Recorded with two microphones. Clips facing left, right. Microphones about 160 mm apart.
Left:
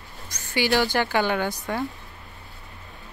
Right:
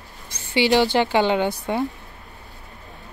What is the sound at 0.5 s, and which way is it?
A woman's voice, 20° right (ahead or behind).